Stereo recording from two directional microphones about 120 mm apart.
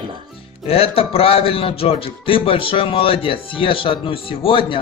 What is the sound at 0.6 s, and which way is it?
A man's voice, 55° left (ahead or behind).